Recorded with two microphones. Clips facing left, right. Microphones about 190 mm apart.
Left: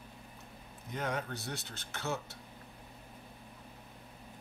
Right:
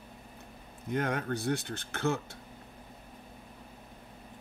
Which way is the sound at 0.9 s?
55° right (ahead or behind).